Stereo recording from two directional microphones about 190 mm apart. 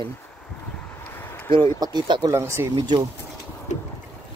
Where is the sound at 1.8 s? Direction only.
20° right (ahead or behind).